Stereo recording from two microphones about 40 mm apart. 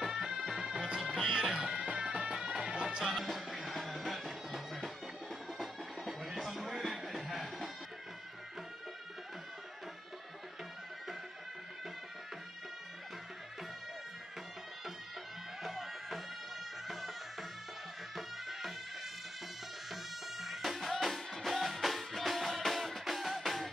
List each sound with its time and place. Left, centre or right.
0.0 s bagpipes: centre
1.2 s music: centre
3.0 s music: centre
15.6 s music: centre
19.9 s music: centre